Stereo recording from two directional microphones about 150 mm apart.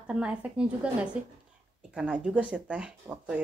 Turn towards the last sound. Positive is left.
turn(degrees=-10)  # may be behind; listen again after turning